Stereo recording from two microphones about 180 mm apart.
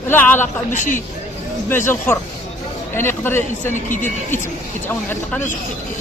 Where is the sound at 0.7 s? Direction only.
45° left (ahead or behind).